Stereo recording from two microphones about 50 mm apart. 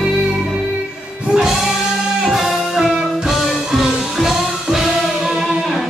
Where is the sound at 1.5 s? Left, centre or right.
Centre.